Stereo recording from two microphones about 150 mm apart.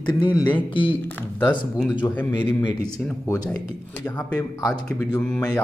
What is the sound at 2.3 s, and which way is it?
Speech, 30° left (ahead or behind).